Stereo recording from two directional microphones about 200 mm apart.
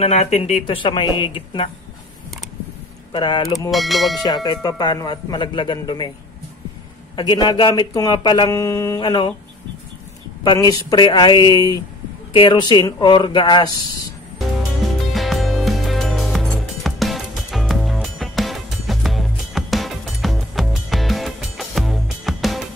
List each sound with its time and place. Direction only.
0.0 s speech: 35° left (ahead or behind)
3.1 s speech: 25° left (ahead or behind)
3.7 s speech: centre (ahead or behind)
4.2 s speech: 20° left (ahead or behind)
7.2 s speech: 20° left (ahead or behind)
10.4 s speech: 20° left (ahead or behind)
14.8 s music: centre (ahead or behind)